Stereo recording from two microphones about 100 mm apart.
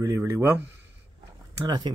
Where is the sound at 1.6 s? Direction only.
45° right (ahead or behind).